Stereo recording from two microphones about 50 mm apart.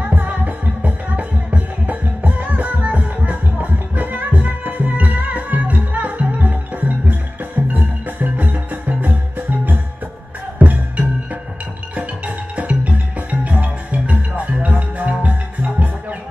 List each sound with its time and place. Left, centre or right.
0.1 s music: right
10.6 s music: right
12.5 s music: right